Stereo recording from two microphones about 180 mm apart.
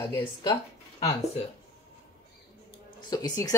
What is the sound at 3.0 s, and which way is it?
Speech, 25° left (ahead or behind).